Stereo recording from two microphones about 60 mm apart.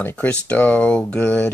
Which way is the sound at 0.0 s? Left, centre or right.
Left.